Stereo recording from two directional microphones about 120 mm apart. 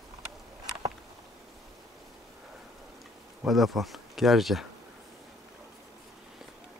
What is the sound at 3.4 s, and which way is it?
Speech, centre (ahead or behind).